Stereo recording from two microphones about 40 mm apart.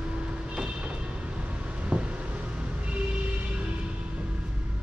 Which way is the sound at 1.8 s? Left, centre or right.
Right.